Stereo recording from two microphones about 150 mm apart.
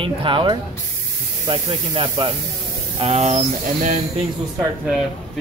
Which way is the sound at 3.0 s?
45° right (ahead or behind).